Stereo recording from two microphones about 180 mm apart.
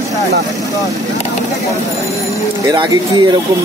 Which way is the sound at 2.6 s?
25° right (ahead or behind).